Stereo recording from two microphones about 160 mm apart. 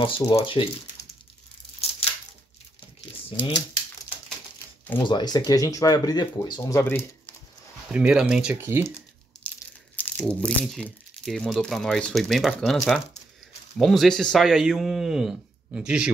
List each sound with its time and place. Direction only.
0.0 s speech: 35° left (ahead or behind)
1.8 s tearing: 40° left (ahead or behind)
4.9 s speech: 25° left (ahead or behind)
6.6 s speech: 15° left (ahead or behind)
7.9 s speech: 5° right (ahead or behind)
9.3 s crushing: 5° left (ahead or behind)
9.9 s speech: 10° left (ahead or behind)